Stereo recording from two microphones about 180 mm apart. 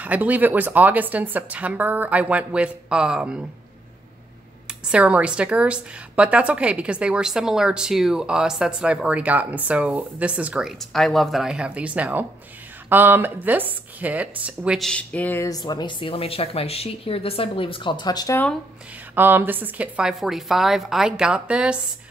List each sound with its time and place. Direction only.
0.0 s a woman's voice: 10° right (ahead or behind)
4.6 s a woman's voice: 5° right (ahead or behind); by 18.4 s 20° left (ahead or behind)
19.1 s a woman's voice: 10° right (ahead or behind)